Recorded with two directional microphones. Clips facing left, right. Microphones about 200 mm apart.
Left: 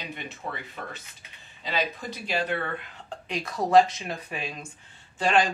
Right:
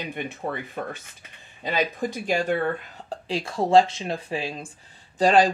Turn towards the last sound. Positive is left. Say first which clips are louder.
# right 5 dB
turn(degrees=-40)  # may be behind; listen again after turning